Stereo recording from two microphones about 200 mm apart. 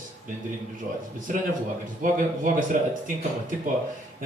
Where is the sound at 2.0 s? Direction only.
40° right (ahead or behind).